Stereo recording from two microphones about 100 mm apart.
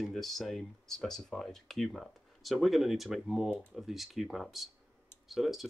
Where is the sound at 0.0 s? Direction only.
Centre (ahead or behind).